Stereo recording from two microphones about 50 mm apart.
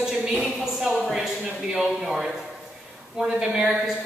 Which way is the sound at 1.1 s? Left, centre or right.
Centre.